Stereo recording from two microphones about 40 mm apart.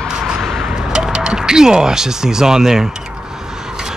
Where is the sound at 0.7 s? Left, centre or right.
Centre.